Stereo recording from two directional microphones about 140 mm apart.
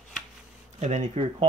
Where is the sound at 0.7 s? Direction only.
55° right (ahead or behind).